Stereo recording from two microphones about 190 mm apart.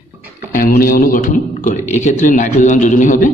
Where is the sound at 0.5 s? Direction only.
50° left (ahead or behind).